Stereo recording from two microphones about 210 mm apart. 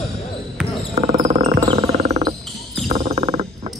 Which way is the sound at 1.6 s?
25° right (ahead or behind).